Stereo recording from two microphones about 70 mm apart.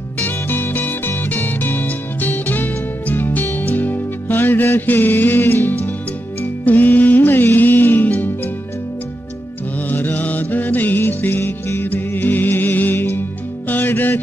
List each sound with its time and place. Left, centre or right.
0.2 s music: left
9.8 s music: left